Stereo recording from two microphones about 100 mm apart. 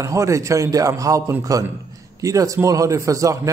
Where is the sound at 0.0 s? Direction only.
30° right (ahead or behind).